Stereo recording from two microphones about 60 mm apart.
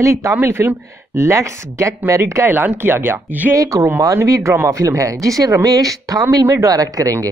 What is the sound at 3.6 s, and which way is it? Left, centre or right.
Speech, right.